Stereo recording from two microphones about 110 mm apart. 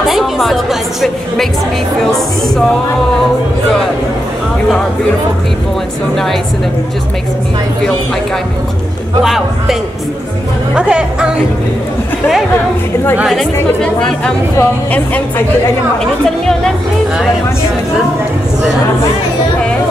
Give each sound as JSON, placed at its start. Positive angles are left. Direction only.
{"t": 0.0, "sound": "a woman's voice", "side_deg": 0}
{"t": 9.2, "sound": "speech", "side_deg": -5}
{"t": 13.2, "sound": "speech", "side_deg": 0}